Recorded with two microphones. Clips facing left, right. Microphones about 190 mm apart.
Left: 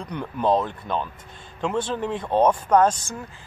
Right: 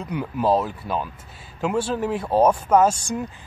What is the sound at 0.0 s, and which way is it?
Speech, 5° right (ahead or behind).